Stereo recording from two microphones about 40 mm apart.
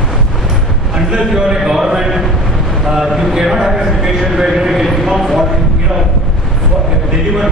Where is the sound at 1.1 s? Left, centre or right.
Right.